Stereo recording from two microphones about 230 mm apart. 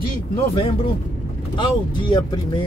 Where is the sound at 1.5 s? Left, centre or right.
Centre.